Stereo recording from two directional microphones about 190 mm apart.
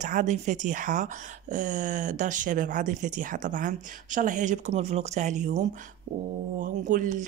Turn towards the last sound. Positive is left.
turn(degrees=-40)  # may be behind; listen again after turning